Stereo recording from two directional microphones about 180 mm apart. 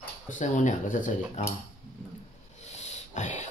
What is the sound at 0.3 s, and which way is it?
Speech, 45° left (ahead or behind).